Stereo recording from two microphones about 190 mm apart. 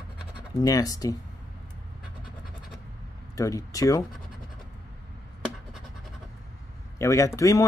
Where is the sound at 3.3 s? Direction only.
15° left (ahead or behind).